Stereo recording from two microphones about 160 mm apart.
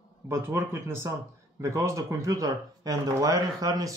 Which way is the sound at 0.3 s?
15° right (ahead or behind).